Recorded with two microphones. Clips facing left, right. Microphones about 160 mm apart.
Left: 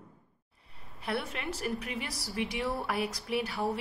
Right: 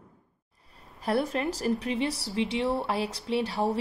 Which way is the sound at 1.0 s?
40° right (ahead or behind).